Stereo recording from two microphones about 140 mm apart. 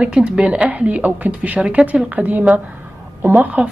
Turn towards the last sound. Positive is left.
turn(degrees=-10)  # may be behind; listen again after turning